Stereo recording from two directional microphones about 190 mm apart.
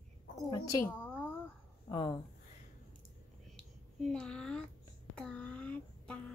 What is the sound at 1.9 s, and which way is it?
Speech, 25° left (ahead or behind).